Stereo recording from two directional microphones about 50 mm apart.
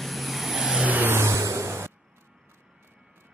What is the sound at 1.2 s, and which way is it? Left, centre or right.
Vehicle, right.